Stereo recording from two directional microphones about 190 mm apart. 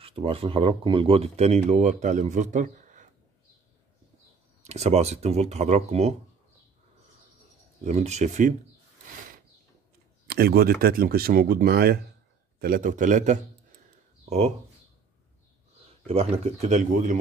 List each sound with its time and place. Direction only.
0.0 s speech: 30° right (ahead or behind)
4.6 s speech: 35° right (ahead or behind)
7.8 s speech: 35° right (ahead or behind)
10.2 s speech: 55° right (ahead or behind)
16.1 s speech: 35° right (ahead or behind)